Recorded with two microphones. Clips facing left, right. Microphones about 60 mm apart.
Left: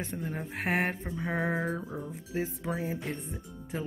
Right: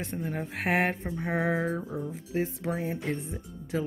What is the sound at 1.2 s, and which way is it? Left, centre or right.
Speech, right.